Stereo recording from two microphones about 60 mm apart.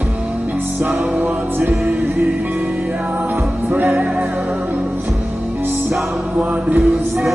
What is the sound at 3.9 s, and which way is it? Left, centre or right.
Music, centre.